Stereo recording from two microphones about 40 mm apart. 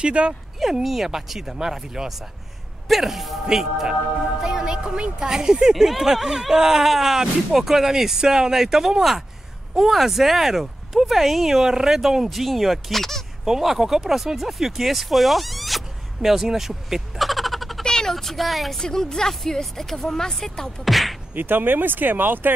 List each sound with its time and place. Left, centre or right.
0.0 s speech: right
0.8 s speech: centre
4.4 s speech: centre
13.5 s speech: centre
16.2 s a sound: centre
17.8 s a sound: centre
18.1 s speech: centre
18.8 s speech: centre
20.8 s a sound: centre
21.4 s speech: right